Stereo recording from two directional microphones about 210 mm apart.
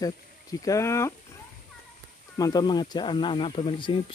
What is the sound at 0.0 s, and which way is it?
Speech, 15° left (ahead or behind).